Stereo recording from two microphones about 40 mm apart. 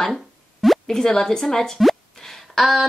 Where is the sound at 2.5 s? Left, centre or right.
Centre.